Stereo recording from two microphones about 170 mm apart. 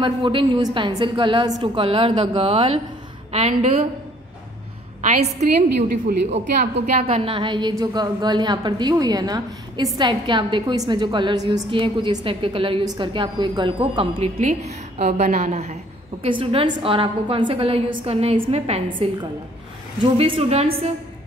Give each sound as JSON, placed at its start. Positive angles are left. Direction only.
{"t": 0.0, "sound": "a woman's voice", "side_deg": -30}
{"t": 5.0, "sound": "a woman's voice", "side_deg": -40}
{"t": 7.0, "sound": "a woman's voice", "side_deg": -35}
{"t": 14.4, "sound": "a sound", "side_deg": -40}
{"t": 15.1, "sound": "a woman's voice", "side_deg": -45}